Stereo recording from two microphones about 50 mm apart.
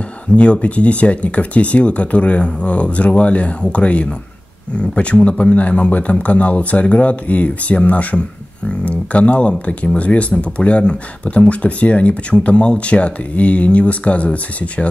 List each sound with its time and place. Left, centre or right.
0.4 s speech: left